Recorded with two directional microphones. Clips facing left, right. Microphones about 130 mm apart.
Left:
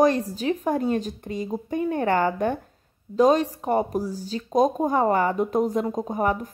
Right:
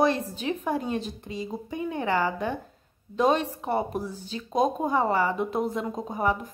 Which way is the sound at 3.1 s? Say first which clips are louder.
Left 5 dB; 40° left (ahead or behind).